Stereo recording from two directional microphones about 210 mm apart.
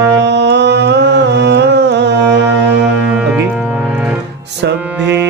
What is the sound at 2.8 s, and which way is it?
Music, 5° right (ahead or behind).